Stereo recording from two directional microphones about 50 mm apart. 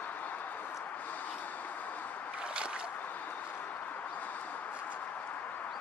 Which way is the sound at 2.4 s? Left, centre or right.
Right.